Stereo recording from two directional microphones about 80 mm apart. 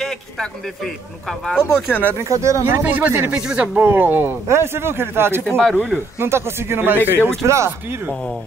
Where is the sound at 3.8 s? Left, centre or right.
Right.